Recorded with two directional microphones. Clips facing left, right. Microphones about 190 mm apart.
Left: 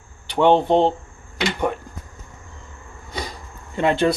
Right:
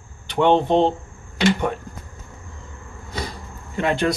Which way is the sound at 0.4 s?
15° left (ahead or behind).